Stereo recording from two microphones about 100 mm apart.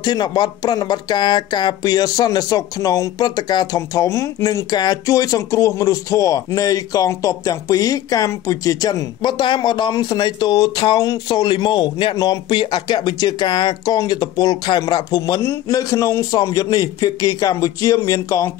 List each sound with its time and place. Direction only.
0.0 s speech: 45° left (ahead or behind)
9.2 s speech: 50° left (ahead or behind); by 18.5 s 35° left (ahead or behind)